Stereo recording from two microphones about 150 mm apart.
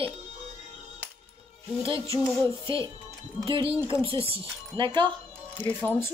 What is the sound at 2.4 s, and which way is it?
Speech, 35° right (ahead or behind).